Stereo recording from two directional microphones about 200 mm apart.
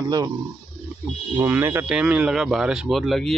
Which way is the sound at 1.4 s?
10° right (ahead or behind).